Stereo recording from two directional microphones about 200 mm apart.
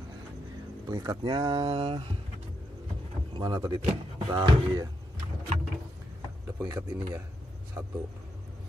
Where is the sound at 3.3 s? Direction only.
20° right (ahead or behind).